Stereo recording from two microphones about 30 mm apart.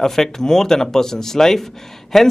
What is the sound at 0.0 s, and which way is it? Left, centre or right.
Speech, centre.